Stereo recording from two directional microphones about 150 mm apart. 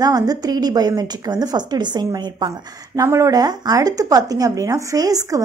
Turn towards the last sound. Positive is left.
turn(degrees=-25)  # may be behind; listen again after turning